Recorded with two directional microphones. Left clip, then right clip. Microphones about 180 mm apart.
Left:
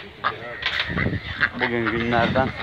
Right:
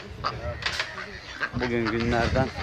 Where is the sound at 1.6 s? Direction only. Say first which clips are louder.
Left 4 dB; centre (ahead or behind).